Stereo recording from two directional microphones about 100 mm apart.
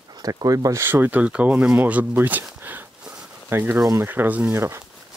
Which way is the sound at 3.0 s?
10° right (ahead or behind).